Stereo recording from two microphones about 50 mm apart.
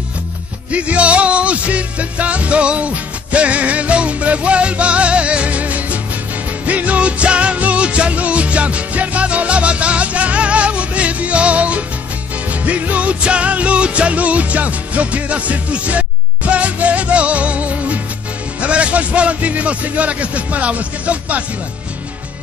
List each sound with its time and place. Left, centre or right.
0.7 s music: right